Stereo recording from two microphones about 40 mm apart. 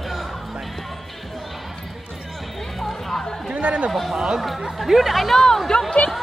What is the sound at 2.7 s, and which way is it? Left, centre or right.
Music, centre.